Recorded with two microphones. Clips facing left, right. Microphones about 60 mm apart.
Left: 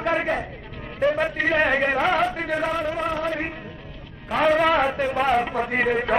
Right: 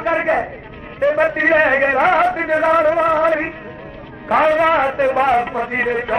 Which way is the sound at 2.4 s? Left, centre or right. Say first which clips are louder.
Right 10 dB; right.